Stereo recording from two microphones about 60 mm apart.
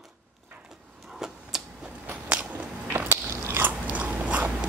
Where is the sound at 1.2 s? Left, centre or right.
Centre.